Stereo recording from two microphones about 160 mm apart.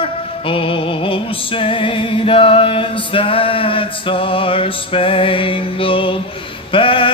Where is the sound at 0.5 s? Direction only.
35° left (ahead or behind).